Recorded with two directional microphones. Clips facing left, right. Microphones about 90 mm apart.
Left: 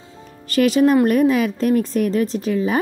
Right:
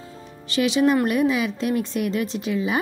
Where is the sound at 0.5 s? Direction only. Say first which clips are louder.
Left 4 dB; 45° left (ahead or behind).